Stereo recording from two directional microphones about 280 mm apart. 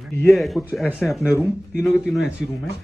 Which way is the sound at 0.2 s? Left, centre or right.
Centre.